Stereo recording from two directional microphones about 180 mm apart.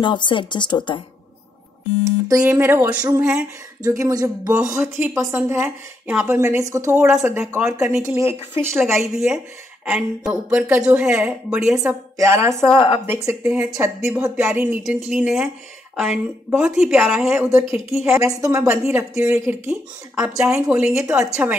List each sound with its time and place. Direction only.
0.0 s a woman's voice: 25° left (ahead or behind)
2.2 s speech: 15° right (ahead or behind)
4.0 s speech: 20° right (ahead or behind)
9.0 s speech: 5° right (ahead or behind)
12.7 s a woman's voice: 30° left (ahead or behind)
13.0 s speech: 15° right (ahead or behind)
18.0 s speech: 15° right (ahead or behind)